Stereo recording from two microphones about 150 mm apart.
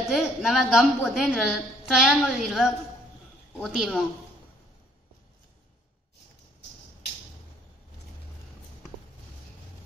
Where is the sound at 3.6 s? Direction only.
5° left (ahead or behind).